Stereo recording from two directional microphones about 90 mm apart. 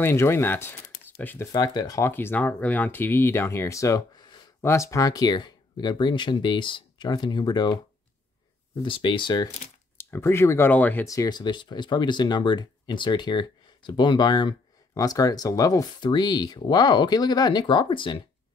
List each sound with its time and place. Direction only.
0.0 s speech: 30° left (ahead or behind)
1.4 s speech: 45° left (ahead or behind)
2.0 s speech: 25° left (ahead or behind)
4.1 s a sound: 50° left (ahead or behind)
4.6 s speech: 30° left (ahead or behind); by 7.8 s 50° left (ahead or behind)
8.8 s speech: 75° left (ahead or behind)
9.9 s speech: 30° left (ahead or behind)
10.7 s speech: 20° left (ahead or behind)
11.1 s speech: 45° left (ahead or behind)
15.0 s speech: 40° left (ahead or behind)
16.0 s speech: 55° left (ahead or behind)